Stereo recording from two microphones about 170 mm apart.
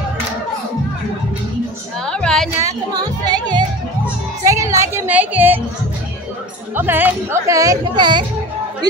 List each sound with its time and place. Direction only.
2.0 s a sound: 5° left (ahead or behind)
2.6 s music: 25° right (ahead or behind)
6.7 s speech: 10° right (ahead or behind)